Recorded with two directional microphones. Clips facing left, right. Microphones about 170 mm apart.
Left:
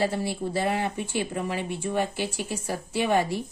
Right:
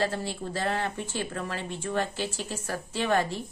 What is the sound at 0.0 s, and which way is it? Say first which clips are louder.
Speech: left 3 dB; 10° left (ahead or behind).